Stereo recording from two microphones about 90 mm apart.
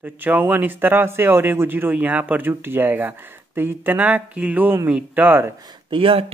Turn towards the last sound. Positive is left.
turn(degrees=-90)